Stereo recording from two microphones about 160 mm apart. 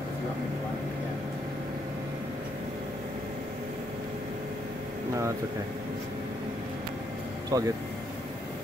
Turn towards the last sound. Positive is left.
turn(degrees=-20)  # may be behind; listen again after turning